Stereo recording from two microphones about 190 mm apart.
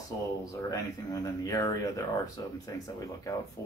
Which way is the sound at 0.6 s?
20° left (ahead or behind).